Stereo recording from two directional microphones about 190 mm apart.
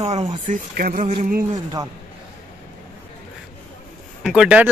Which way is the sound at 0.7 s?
45° right (ahead or behind).